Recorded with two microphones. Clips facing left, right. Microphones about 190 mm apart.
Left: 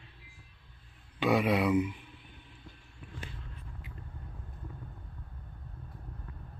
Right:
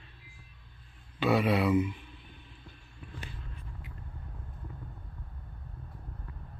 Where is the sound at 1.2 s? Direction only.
15° left (ahead or behind).